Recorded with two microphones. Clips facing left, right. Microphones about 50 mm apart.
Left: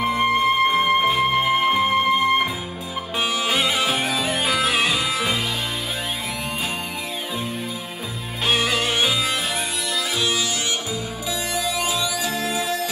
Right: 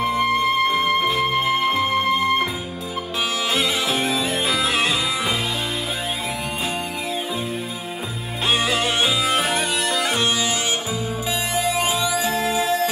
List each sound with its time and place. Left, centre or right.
0.0 s music: centre
3.7 s music: left
8.5 s music: right
11.5 s music: right